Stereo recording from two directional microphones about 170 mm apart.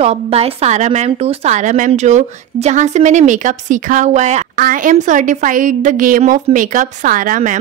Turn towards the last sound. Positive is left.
turn(degrees=-50)  # may be behind; listen again after turning